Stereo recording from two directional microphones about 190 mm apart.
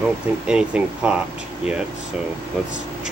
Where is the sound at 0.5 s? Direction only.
5° right (ahead or behind).